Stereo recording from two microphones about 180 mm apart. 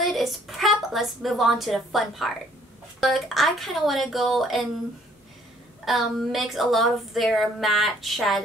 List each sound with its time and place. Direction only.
0.0 s speech: centre (ahead or behind)
5.9 s speech: centre (ahead or behind)